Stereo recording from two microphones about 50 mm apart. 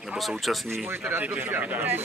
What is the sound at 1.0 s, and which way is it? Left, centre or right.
A man's voice, right.